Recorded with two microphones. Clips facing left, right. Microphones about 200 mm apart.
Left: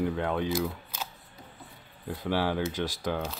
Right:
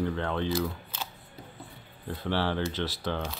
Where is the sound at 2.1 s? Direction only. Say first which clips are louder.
Left 1 dB; 10° left (ahead or behind).